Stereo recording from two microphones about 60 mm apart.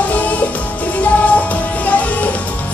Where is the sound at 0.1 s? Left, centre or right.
Left.